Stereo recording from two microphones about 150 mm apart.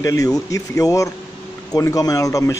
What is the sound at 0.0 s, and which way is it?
A man's voice, 20° left (ahead or behind).